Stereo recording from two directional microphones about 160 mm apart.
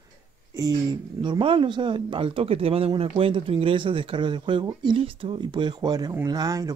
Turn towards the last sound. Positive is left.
turn(degrees=-25)  # may be behind; listen again after turning